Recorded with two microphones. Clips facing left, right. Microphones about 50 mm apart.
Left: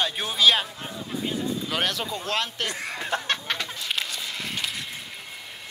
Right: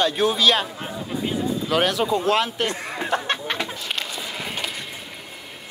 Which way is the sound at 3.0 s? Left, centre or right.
Centre.